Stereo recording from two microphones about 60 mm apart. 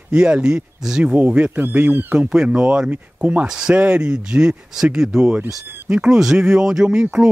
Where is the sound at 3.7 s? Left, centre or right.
Right.